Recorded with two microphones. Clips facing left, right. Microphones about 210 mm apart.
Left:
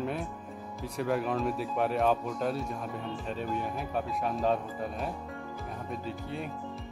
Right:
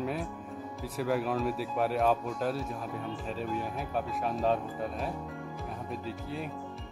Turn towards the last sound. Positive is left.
turn(degrees=0)  # may be behind; listen again after turning